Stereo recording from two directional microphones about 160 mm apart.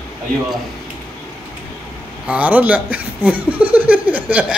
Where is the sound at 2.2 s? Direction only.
10° right (ahead or behind).